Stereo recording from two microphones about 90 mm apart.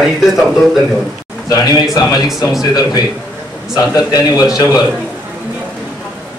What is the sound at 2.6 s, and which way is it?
A man's voice, 50° left (ahead or behind).